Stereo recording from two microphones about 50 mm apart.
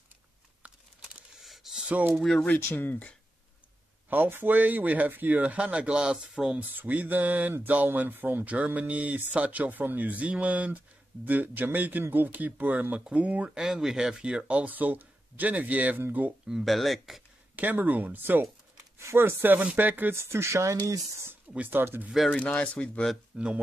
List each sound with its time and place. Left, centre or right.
1.4 s a sound: centre
2.1 s speech: centre
2.7 s speech: left
4.1 s speech: right
5.4 s speech: right
6.6 s speech: right
13.6 s speech: centre
14.6 s speech: right
16.6 s speech: centre
17.6 s speech: right
20.2 s speech: right
21.6 s speech: right
22.3 s speech: left
23.3 s speech: right